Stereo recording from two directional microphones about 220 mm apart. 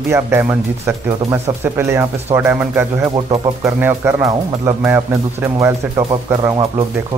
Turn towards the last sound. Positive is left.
turn(degrees=-15)  # may be behind; listen again after turning